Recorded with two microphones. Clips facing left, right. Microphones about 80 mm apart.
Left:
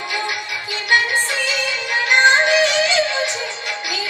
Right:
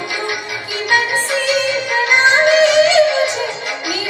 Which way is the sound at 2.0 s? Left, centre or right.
Centre.